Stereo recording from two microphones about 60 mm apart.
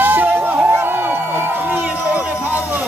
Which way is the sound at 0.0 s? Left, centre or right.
Right.